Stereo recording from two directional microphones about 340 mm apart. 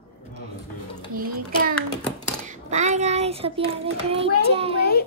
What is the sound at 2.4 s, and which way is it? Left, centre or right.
Child singing, right.